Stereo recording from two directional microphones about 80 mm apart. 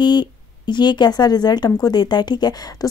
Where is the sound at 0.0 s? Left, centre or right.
Left.